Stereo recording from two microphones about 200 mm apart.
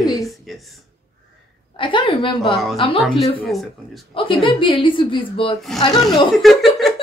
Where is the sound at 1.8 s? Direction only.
25° left (ahead or behind).